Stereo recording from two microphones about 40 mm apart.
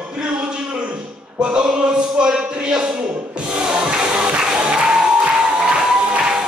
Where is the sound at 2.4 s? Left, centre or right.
Right.